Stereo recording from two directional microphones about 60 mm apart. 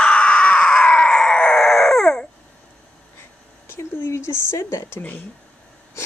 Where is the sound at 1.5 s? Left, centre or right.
Centre.